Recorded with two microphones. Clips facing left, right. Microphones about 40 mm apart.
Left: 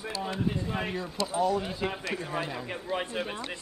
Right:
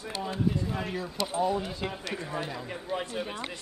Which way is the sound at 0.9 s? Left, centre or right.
Centre.